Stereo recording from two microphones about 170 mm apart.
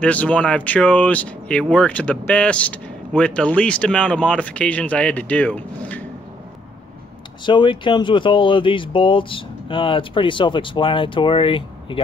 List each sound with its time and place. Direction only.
0.0 s speech: 10° left (ahead or behind)
7.4 s speech: 30° left (ahead or behind)